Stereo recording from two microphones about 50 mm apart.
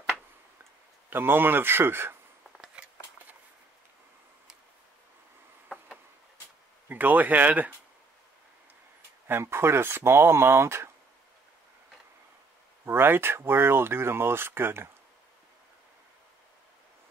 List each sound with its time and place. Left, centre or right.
1.1 s speech: right
2.8 s a sound: right
6.9 s speech: right
9.3 s speech: right
12.8 s speech: right